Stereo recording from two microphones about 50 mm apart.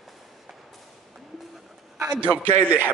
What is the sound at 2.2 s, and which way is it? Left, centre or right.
Speech, right.